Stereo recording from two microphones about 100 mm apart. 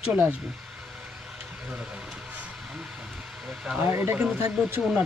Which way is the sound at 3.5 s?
5° right (ahead or behind).